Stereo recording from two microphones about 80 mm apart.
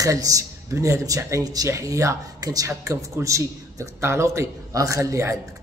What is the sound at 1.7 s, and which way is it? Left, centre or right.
A man's voice, right.